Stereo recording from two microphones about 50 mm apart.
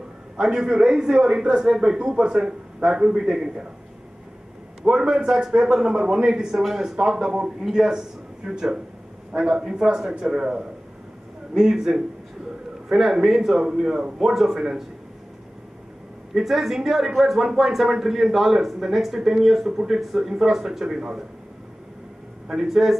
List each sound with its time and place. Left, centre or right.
0.4 s speech: centre
4.8 s a man's voice: centre
16.3 s speech: centre
22.5 s speech: centre